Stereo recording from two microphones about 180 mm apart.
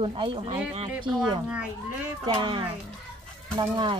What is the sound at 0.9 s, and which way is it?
Speech, 5° right (ahead or behind).